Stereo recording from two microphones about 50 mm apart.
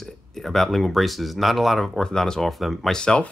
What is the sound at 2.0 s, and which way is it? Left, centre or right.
Speech, centre.